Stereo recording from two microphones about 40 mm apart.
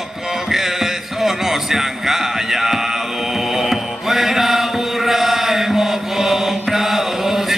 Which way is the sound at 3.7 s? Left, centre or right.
Centre.